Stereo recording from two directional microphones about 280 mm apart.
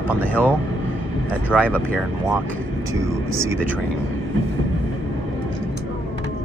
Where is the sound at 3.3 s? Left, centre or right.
Centre.